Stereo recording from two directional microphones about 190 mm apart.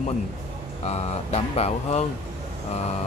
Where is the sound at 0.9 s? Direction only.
35° left (ahead or behind).